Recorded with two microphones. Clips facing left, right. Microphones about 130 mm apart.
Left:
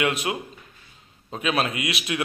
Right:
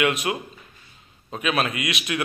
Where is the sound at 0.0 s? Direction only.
25° left (ahead or behind).